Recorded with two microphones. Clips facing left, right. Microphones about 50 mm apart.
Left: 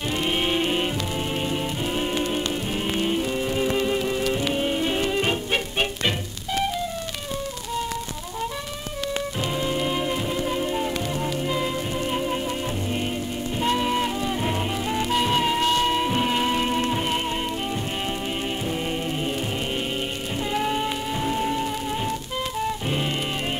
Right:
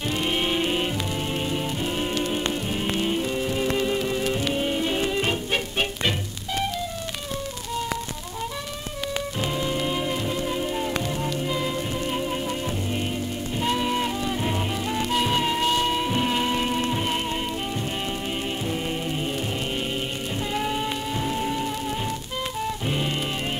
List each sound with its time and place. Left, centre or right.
0.1 s music: centre
9.5 s music: centre
20.5 s music: centre